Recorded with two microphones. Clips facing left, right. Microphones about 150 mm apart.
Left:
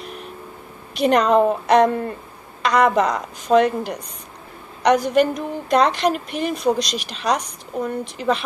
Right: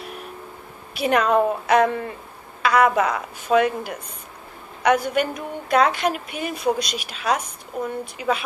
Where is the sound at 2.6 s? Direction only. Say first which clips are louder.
Left 1 dB; 5° right (ahead or behind).